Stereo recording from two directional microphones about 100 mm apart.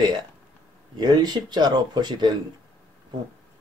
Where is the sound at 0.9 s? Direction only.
45° right (ahead or behind).